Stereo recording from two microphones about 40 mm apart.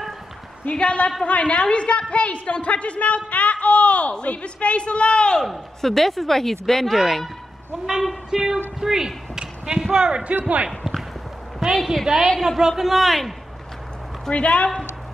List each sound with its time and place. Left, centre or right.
0.7 s a man's voice: left
3.3 s a sound: left
4.1 s a man's voice: left
5.4 s a woman's voice: centre
7.8 s speech: centre
8.3 s music: centre
8.7 s speech: centre
10.8 s basketball bounce: centre
11.7 s a man's voice: centre
14.3 s a woman's voice: left